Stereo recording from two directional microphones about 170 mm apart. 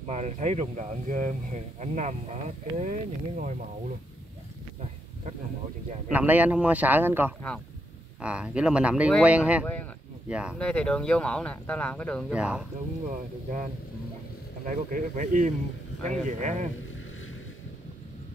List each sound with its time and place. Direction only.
0.0 s speech: 40° right (ahead or behind)
6.0 s speech: 10° right (ahead or behind)
10.6 s speech: 5° left (ahead or behind)
12.3 s speech: 5° right (ahead or behind)
14.7 s speech: 50° right (ahead or behind)